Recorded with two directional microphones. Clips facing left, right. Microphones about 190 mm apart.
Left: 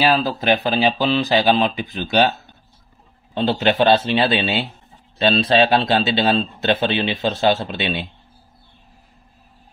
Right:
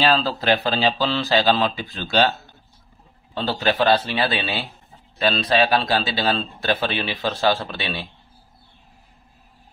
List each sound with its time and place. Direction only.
0.0 s speech: 10° left (ahead or behind)
3.3 s a man's voice: 20° left (ahead or behind)